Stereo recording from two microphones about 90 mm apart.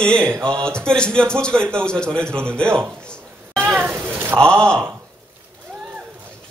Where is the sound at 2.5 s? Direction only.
10° left (ahead or behind).